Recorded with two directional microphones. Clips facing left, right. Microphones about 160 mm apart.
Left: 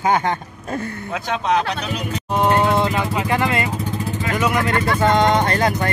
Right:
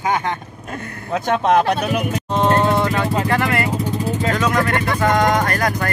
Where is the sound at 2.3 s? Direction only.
15° left (ahead or behind).